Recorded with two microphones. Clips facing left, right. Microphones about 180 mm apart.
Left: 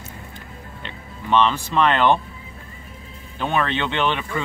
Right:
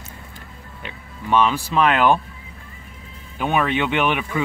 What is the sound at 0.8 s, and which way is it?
Speech, 10° right (ahead or behind).